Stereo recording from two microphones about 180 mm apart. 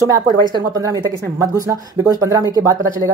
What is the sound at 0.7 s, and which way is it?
Speech, 20° right (ahead or behind).